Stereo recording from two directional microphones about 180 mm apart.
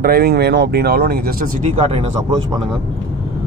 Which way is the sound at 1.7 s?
35° right (ahead or behind).